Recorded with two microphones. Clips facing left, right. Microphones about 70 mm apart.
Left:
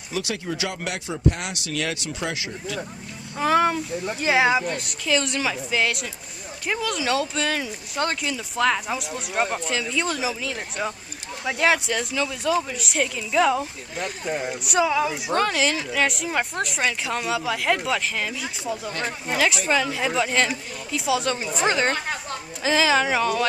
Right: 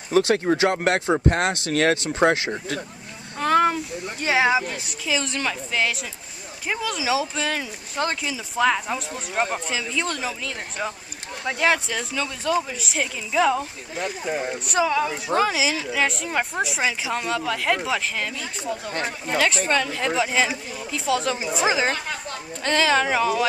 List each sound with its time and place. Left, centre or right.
0.1 s speech: right
3.3 s speech: centre